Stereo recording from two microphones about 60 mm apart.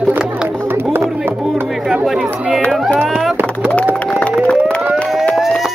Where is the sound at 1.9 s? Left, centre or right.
Centre.